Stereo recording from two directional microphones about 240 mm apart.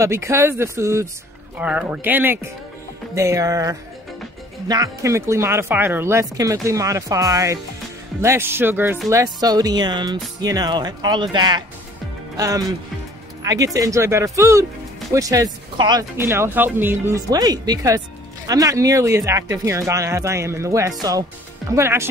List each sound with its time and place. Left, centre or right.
0.0 s speech: centre
13.4 s music: centre
13.7 s speech: centre